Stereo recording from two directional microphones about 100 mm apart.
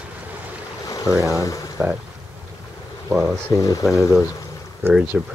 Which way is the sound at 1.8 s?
20° right (ahead or behind).